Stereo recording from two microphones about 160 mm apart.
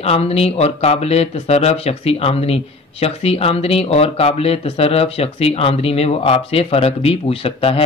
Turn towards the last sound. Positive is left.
turn(degrees=35)  # may be behind; listen again after turning